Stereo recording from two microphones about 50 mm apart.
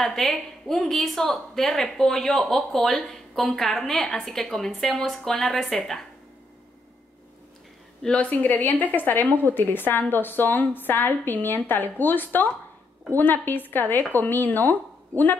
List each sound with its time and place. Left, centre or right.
0.0 s a woman's voice: centre
8.2 s a woman's voice: left